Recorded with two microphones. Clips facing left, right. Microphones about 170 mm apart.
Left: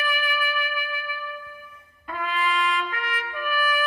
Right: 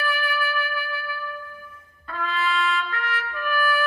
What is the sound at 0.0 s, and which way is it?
Music, 20° left (ahead or behind).